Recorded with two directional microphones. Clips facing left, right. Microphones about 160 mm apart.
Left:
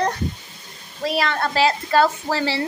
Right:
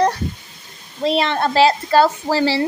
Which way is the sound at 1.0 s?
25° right (ahead or behind).